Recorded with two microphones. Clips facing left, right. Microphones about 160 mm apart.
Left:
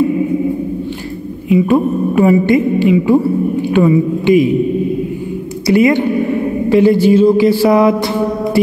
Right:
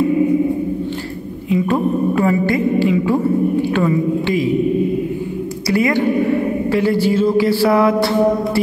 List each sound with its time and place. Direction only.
1.5 s mantra: 15° left (ahead or behind)
5.7 s speech: 20° left (ahead or behind)
6.7 s mantra: 20° left (ahead or behind)